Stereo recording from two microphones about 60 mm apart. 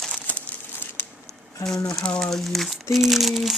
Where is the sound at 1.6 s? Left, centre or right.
Left.